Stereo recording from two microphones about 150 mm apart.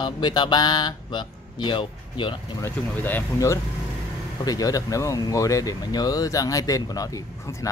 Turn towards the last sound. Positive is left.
turn(degrees=20)  # may be behind; listen again after turning